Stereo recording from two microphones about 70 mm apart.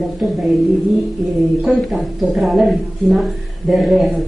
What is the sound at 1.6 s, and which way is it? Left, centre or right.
Speech, centre.